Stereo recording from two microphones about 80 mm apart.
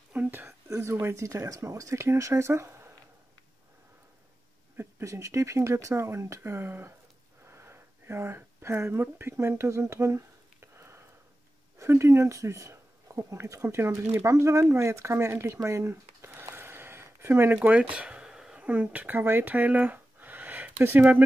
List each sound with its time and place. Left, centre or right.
0.1 s whispering: right
0.7 s speech: right
4.7 s speech: right
7.4 s a sound: right
11.8 s speech: right
15.9 s a sound: right
17.6 s speech: centre